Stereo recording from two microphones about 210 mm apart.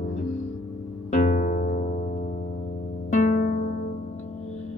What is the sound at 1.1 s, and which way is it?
Music, 35° left (ahead or behind).